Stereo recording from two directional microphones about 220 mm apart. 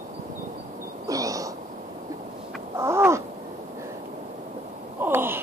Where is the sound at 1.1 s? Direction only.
15° right (ahead or behind).